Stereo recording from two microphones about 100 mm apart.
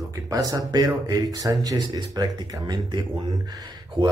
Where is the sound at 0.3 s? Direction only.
35° right (ahead or behind).